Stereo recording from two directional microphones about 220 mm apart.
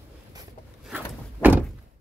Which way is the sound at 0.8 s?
5° right (ahead or behind).